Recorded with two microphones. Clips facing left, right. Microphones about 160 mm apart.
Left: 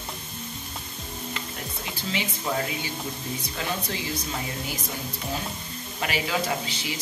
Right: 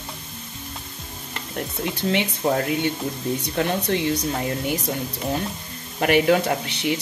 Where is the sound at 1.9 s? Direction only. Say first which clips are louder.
Right 7 dB; 60° right (ahead or behind).